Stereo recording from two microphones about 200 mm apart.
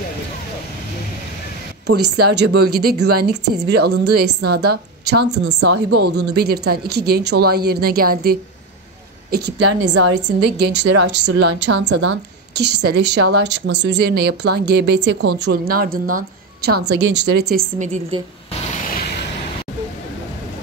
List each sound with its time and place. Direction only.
1.9 s a woman's voice: 55° right (ahead or behind)
16.8 s a woman's voice: 60° right (ahead or behind)
17.7 s a woman's voice: 35° right (ahead or behind)
18.9 s vehicle: 50° left (ahead or behind)